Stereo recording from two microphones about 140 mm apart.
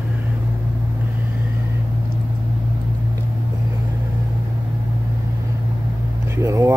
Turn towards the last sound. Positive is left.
turn(degrees=-20)  # may be behind; listen again after turning